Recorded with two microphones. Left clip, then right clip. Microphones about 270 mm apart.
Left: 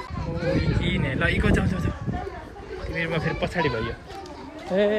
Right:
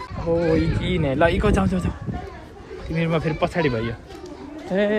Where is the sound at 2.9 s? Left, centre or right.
Centre.